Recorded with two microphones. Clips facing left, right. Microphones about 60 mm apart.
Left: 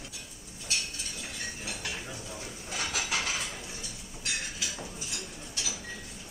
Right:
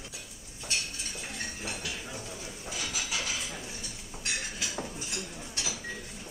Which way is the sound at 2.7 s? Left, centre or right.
Left.